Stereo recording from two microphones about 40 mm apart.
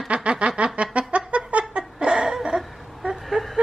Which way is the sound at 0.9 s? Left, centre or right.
Right.